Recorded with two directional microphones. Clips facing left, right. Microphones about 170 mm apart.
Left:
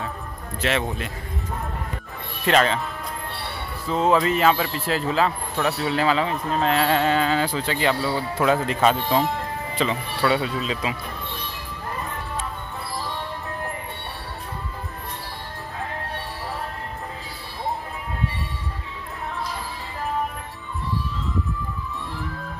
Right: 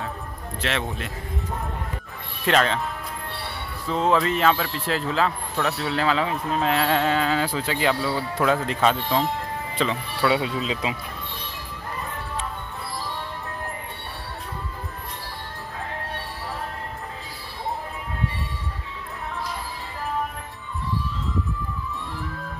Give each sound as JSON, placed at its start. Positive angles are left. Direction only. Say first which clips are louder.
{"t": 0.6, "sound": "speech", "louder": "left 3 dB", "side_deg": 5}
{"t": 2.4, "sound": "speech", "louder": "left 2 dB", "side_deg": 0}
{"t": 3.8, "sound": "speech", "louder": "left 2 dB", "side_deg": 5}
{"t": 10.3, "sound": "speech", "louder": "even", "side_deg": -15}